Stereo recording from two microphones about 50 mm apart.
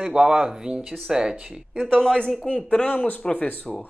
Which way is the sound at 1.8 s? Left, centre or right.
Centre.